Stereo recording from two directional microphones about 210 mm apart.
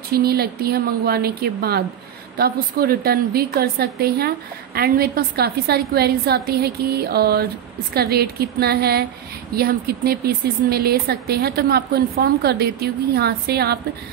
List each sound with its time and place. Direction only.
0.1 s speech: 45° right (ahead or behind)